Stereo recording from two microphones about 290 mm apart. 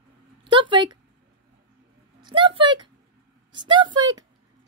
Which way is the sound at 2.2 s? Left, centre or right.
Centre.